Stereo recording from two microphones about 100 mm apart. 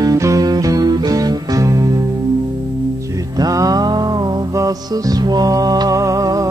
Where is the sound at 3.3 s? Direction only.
40° right (ahead or behind).